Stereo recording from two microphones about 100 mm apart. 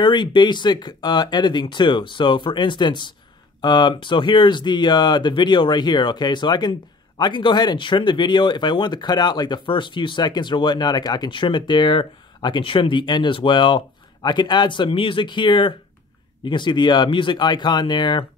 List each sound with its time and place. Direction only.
0.0 s speech: 50° left (ahead or behind)